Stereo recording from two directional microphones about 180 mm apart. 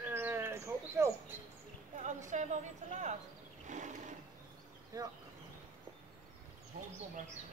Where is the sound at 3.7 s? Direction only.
45° right (ahead or behind).